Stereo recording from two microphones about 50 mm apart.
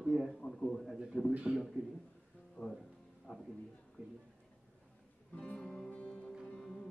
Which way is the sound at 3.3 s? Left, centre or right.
Centre.